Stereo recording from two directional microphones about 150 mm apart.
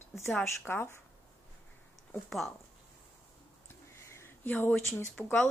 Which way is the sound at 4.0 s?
15° left (ahead or behind).